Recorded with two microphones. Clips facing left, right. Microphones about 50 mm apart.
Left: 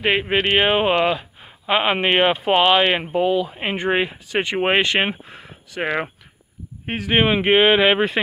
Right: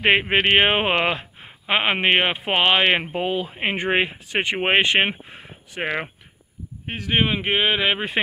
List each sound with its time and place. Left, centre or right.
0.0 s speech: right
1.7 s speech: centre
7.1 s speech: left